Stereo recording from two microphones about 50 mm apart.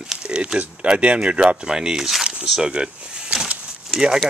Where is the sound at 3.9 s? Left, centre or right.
Centre.